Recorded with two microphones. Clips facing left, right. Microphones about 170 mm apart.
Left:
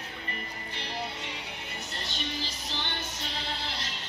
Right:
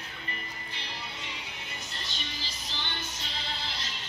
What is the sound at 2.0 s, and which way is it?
Music, 60° left (ahead or behind).